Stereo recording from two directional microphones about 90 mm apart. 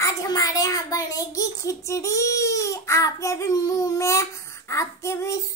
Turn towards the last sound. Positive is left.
turn(degrees=35)  # may be behind; listen again after turning